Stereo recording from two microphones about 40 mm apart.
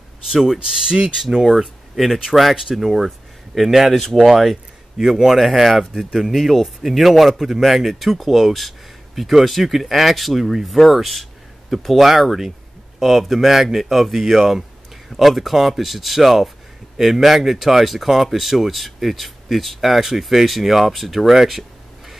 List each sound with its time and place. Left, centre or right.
0.3 s speech: centre
1.2 s speech: centre